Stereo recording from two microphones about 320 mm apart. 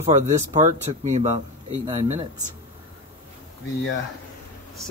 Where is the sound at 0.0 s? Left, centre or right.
Right.